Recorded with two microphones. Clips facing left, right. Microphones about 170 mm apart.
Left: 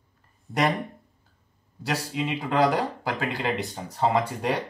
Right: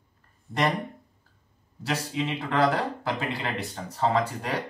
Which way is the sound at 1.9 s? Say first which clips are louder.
Left 1 dB; 5° left (ahead or behind).